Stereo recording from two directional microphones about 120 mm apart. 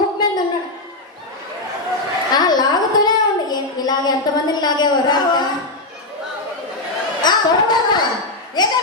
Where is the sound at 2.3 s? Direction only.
35° left (ahead or behind).